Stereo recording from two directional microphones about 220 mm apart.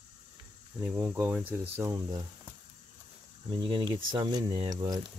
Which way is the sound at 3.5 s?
20° right (ahead or behind).